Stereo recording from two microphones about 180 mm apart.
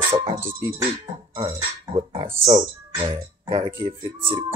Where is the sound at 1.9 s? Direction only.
25° right (ahead or behind).